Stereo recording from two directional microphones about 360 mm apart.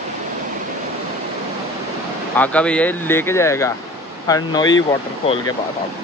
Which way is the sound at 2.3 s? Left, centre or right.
Centre.